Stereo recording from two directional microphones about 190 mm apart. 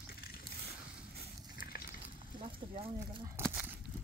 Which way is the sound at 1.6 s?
50° left (ahead or behind).